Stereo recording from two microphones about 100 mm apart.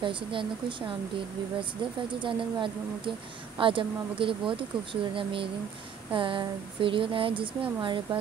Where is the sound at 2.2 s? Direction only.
55° right (ahead or behind).